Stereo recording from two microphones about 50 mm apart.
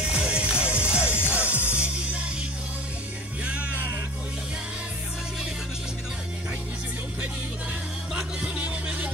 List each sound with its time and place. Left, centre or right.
0.0 s music: right
8.1 s music: right